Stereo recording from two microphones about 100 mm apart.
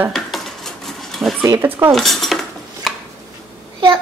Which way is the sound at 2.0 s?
Centre (ahead or behind).